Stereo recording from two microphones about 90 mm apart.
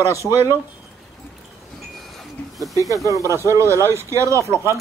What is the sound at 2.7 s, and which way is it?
Speech, 40° right (ahead or behind).